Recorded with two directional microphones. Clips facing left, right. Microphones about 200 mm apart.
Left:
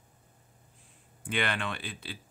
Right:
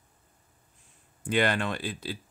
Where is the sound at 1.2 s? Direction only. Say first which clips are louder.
Right 6 dB; 40° right (ahead or behind).